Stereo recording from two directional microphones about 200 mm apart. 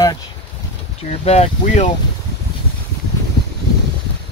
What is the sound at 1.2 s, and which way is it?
Speech, 30° left (ahead or behind).